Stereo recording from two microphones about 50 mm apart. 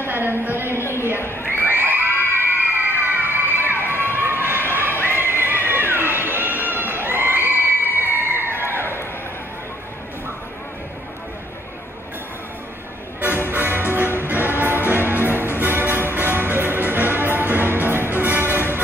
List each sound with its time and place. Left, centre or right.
0.0 s a sound: right
0.7 s a sound: left
1.5 s children shouting: right
4.0 s a sound: right
5.0 s neigh: right
6.3 s crowd: right
6.6 s crowd: left
6.9 s crowd: right
13.2 s music: right